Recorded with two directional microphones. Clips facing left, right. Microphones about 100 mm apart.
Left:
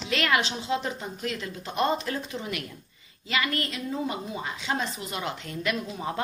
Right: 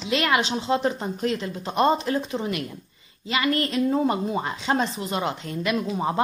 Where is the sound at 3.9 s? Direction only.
50° right (ahead or behind).